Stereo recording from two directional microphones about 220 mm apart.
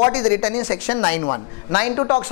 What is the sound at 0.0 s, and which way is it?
A woman's voice, 20° left (ahead or behind).